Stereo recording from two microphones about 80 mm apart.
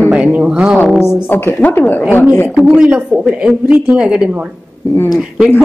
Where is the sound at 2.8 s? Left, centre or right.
Centre.